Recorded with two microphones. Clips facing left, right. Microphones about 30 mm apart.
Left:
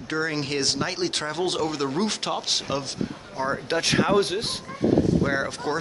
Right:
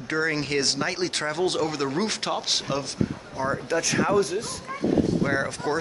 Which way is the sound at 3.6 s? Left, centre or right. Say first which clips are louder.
Left 2 dB; left.